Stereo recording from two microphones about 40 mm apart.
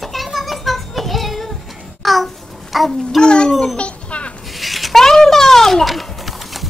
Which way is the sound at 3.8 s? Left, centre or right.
Left.